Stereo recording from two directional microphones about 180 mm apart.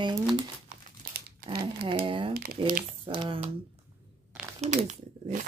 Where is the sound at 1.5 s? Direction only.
60° right (ahead or behind).